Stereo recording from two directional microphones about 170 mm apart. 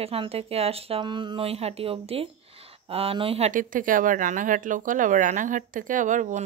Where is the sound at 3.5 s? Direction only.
50° right (ahead or behind).